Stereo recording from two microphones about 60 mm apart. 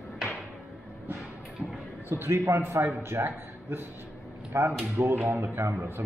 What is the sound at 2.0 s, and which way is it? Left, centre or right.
Speech, right.